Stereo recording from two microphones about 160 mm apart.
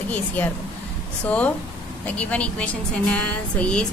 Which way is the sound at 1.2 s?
10° left (ahead or behind).